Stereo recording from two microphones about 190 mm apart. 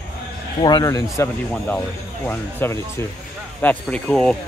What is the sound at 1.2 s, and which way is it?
Speech, 10° left (ahead or behind).